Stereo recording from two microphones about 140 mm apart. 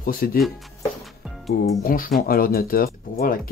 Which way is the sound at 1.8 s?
90° left.